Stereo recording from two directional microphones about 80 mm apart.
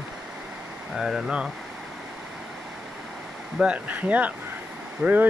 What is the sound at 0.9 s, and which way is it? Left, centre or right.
Speech, centre.